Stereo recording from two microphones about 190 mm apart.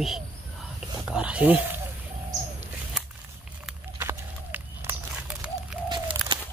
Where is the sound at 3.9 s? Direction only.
10° right (ahead or behind).